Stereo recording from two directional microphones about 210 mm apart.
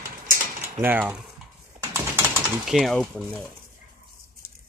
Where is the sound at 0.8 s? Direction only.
10° right (ahead or behind).